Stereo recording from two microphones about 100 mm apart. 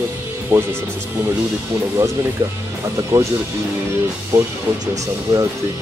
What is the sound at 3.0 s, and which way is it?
Speech, 30° right (ahead or behind).